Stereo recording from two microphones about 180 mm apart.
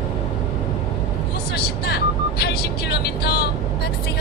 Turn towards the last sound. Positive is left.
turn(degrees=65)  # may be behind; listen again after turning